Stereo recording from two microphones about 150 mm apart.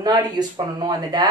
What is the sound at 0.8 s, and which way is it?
Speech, 30° right (ahead or behind).